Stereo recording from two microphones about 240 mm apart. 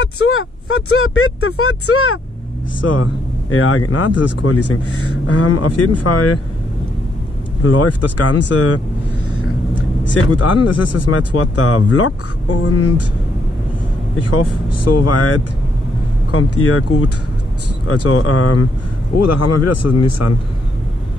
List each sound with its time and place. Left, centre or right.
0.0 s speech: left
2.8 s speech: left
7.6 s speech: left
10.3 s speech: left
14.2 s speech: left
16.3 s speech: left
19.1 s a man's voice: left